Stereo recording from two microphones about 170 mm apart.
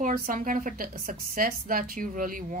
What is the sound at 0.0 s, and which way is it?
A woman's voice, 55° right (ahead or behind).